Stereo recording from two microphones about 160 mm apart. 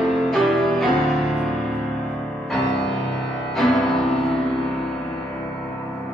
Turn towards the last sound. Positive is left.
turn(degrees=0)  # may be behind; listen again after turning